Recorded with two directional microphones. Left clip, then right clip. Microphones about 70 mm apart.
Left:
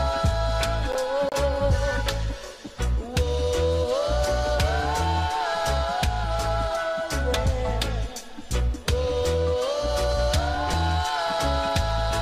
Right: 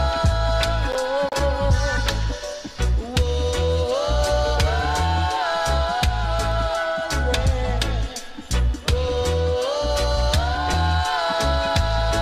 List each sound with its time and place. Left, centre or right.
0.0 s music: right
3.2 s music: centre
4.3 s music: centre
4.6 s music: centre
10.7 s music: centre
11.2 s music: centre